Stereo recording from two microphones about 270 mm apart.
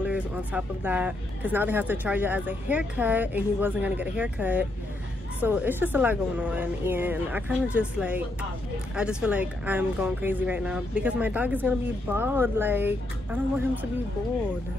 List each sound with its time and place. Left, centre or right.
0.0 s speech: centre